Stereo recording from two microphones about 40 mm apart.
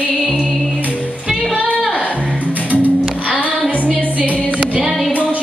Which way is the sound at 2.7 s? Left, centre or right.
Right.